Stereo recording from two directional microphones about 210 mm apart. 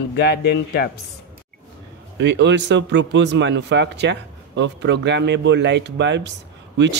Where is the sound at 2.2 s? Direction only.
55° right (ahead or behind).